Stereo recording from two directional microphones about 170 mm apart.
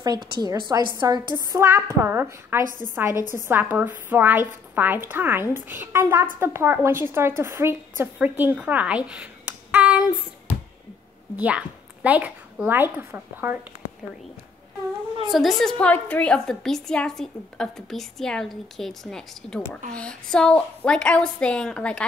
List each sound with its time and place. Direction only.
0.0 s a woman's voice: 25° right (ahead or behind); by 10.0 s 10° right (ahead or behind)
11.3 s speech: 10° right (ahead or behind)
15.3 s a woman's voice: centre (ahead or behind)